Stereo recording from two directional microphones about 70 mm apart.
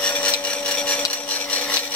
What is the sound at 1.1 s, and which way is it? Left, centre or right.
Wood, centre.